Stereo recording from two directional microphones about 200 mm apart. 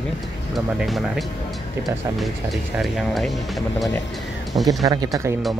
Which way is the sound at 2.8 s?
Centre (ahead or behind).